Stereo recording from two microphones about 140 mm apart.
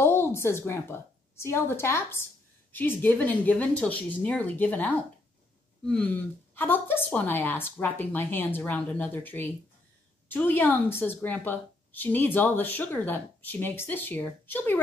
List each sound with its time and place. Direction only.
0.0 s a woman's voice: 15° left (ahead or behind)